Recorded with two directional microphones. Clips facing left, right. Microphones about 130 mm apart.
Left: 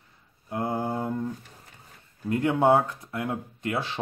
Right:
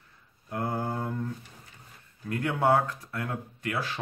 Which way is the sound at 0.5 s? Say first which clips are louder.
Left 3 dB; 20° left (ahead or behind).